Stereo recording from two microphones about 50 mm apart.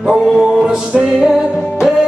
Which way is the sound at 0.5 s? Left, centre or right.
Centre.